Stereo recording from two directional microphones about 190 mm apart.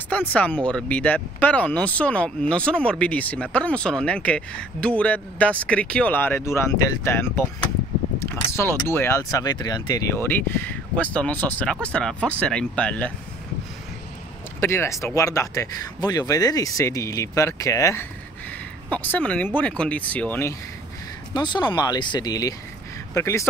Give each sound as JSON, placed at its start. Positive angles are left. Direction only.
{"t": 0.1, "sound": "speech", "side_deg": 5}
{"t": 8.5, "sound": "speech", "side_deg": 15}
{"t": 14.6, "sound": "speech", "side_deg": 15}
{"t": 21.3, "sound": "speech", "side_deg": 25}